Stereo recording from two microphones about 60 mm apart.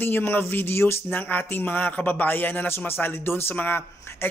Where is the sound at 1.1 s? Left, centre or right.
Left.